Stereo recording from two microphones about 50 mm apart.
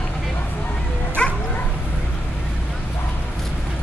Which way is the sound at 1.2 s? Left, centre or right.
Centre.